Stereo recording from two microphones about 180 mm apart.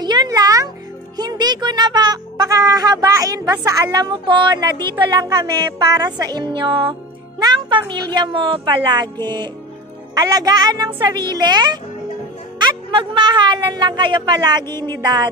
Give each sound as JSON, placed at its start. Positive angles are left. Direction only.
{"t": 0.0, "sound": "music", "side_deg": -25}
{"t": 1.1, "sound": "speech", "side_deg": -20}